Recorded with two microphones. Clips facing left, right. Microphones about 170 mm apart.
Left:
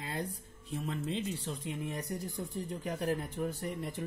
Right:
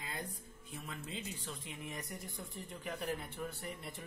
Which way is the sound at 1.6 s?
35° left (ahead or behind).